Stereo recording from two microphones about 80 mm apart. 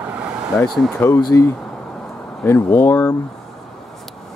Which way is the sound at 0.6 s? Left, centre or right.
Centre.